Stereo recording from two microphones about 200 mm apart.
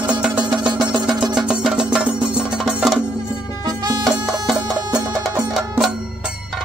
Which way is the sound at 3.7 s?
20° right (ahead or behind).